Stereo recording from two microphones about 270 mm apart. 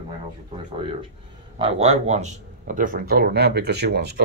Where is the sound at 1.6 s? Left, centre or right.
Right.